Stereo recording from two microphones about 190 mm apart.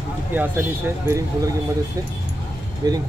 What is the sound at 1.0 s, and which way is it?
Speech, 15° right (ahead or behind).